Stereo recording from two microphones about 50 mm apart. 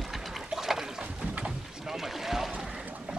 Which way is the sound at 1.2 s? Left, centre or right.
Right.